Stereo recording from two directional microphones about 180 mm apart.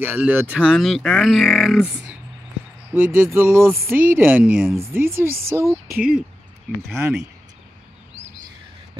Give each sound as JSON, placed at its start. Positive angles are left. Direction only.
{"t": 0.0, "sound": "speech", "side_deg": -10}
{"t": 2.9, "sound": "speech", "side_deg": -10}